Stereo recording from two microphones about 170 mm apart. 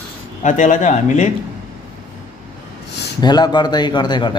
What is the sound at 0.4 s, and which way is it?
Speech, 45° left (ahead or behind).